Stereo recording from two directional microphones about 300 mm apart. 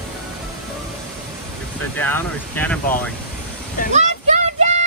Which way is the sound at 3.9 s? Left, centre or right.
Right.